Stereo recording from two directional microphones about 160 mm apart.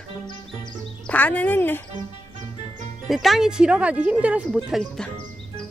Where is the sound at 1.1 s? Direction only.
10° left (ahead or behind).